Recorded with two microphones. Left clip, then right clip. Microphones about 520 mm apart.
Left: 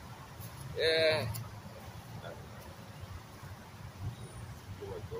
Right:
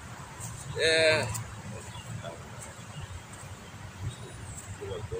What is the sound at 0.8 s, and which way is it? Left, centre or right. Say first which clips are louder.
Speech: right 5 dB; left.